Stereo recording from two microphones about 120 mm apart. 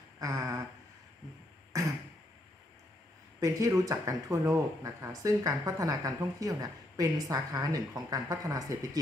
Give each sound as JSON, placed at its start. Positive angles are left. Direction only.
{"t": 0.2, "sound": "a sound", "side_deg": -25}
{"t": 1.7, "sound": "throat clearing", "side_deg": -25}
{"t": 3.3, "sound": "speech", "side_deg": -30}